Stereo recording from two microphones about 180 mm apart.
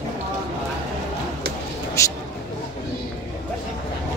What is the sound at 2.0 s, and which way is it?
Speech, 15° left (ahead or behind).